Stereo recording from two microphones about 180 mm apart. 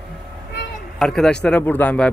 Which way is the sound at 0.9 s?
5° left (ahead or behind).